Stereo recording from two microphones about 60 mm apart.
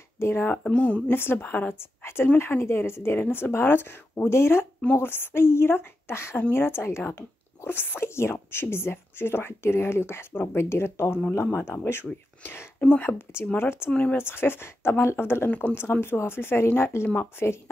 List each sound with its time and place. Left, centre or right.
0.2 s speech: left
0.7 s speech: left
1.1 s speech: left